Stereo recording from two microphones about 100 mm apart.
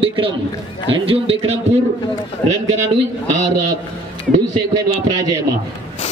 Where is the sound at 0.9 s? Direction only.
70° right (ahead or behind).